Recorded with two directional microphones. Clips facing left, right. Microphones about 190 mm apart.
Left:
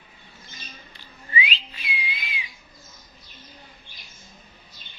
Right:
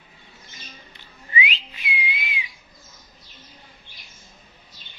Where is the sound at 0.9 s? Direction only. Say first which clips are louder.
Right 1 dB; 20° right (ahead or behind).